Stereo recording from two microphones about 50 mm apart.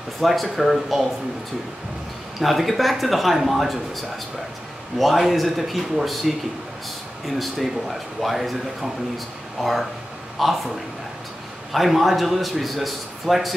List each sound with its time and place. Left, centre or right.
0.2 s a man's voice: centre
2.4 s a man's voice: centre
11.7 s a man's voice: centre